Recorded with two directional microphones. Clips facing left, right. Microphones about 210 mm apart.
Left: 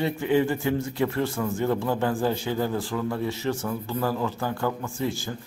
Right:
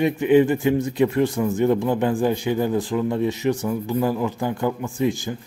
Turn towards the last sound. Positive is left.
turn(degrees=-15)  # may be behind; listen again after turning